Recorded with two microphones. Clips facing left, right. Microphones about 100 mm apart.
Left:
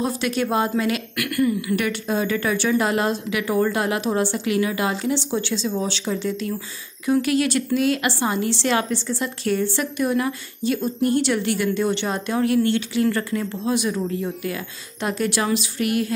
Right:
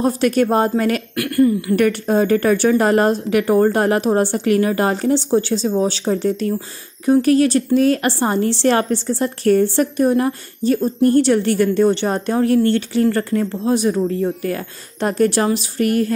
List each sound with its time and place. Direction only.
0.0 s speech: 45° right (ahead or behind)
1.1 s a woman's voice: 35° right (ahead or behind)